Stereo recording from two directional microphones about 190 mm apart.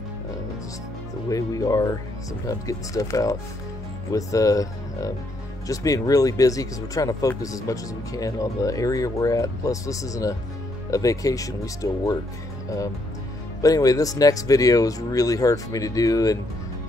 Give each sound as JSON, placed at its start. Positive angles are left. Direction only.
{"t": 1.3, "sound": "speech", "side_deg": 20}